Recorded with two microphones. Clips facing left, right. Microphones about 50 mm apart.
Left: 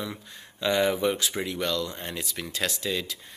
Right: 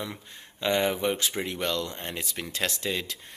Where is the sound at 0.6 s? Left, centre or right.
Right.